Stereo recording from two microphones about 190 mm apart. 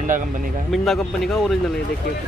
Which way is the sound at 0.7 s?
Centre (ahead or behind).